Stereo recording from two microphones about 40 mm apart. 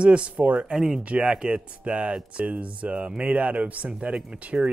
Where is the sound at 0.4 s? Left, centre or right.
Right.